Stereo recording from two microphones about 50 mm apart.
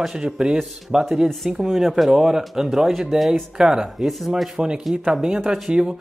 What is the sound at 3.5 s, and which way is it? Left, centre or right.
Speech, centre.